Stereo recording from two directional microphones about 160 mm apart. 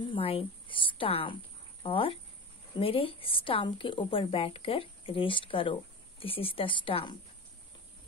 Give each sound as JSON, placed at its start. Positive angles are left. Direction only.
{"t": 0.1, "sound": "a woman's voice", "side_deg": 35}